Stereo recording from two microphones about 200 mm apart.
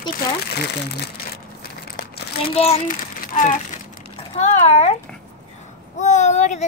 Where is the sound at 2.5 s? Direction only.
30° left (ahead or behind).